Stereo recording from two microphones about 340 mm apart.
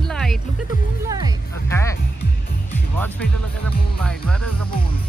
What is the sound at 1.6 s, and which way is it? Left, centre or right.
Speech, centre.